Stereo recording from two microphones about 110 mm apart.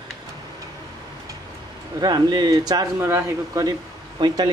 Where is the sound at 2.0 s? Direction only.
40° right (ahead or behind).